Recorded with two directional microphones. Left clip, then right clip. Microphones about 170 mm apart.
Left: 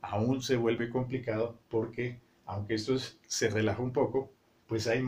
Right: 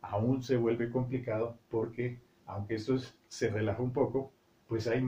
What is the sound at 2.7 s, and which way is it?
Speech, 20° left (ahead or behind).